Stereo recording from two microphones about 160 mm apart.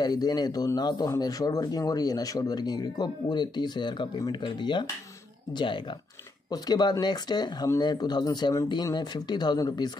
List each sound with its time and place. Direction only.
0.0 s speech: 25° left (ahead or behind)
6.5 s speech: 25° left (ahead or behind)